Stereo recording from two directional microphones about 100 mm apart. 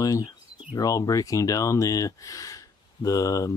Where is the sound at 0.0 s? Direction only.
35° left (ahead or behind).